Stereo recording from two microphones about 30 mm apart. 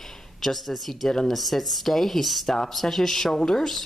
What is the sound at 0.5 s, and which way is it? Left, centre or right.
Speech, centre.